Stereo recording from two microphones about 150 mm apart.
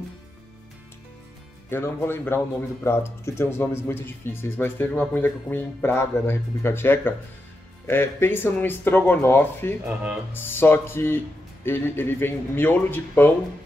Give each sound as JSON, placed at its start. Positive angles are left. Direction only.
{"t": 1.7, "sound": "speech", "side_deg": 15}